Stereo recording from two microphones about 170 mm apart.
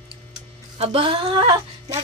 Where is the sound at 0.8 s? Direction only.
35° right (ahead or behind).